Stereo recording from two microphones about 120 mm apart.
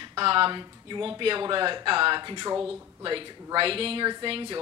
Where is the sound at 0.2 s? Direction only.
50° right (ahead or behind).